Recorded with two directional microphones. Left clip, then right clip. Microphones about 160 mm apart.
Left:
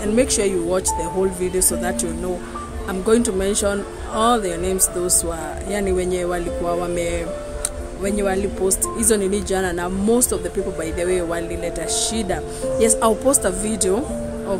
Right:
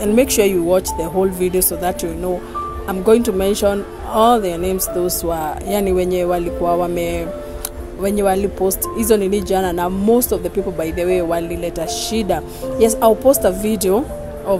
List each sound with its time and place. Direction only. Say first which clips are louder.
0.1 s speech: right 4 dB; 25° right (ahead or behind)